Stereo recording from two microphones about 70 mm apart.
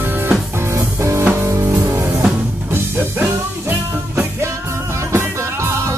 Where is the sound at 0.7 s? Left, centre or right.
Right.